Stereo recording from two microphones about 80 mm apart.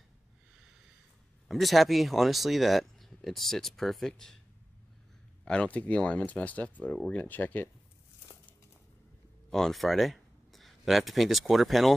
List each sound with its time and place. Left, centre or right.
1.5 s speech: centre
5.4 s speech: centre
9.5 s speech: centre